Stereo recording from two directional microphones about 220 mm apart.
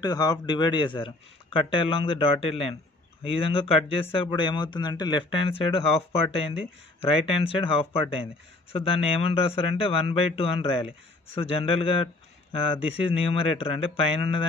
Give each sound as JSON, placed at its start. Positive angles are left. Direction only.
{"t": 0.0, "sound": "speech", "side_deg": 20}